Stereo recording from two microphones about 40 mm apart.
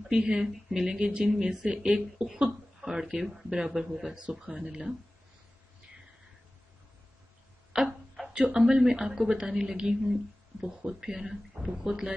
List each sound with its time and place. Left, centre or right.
0.1 s speech: right
4.2 s speech: right
7.7 s a sound: centre
8.5 s speech: centre